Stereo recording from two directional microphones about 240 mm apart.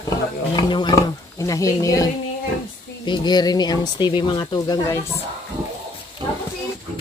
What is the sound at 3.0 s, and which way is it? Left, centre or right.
Speech, centre.